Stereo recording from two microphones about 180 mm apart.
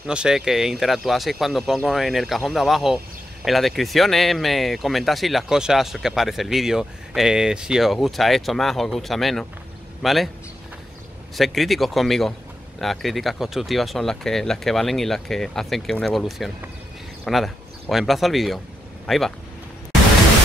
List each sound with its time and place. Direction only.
0.0 s speech: 5° right (ahead or behind)
11.3 s speech: centre (ahead or behind)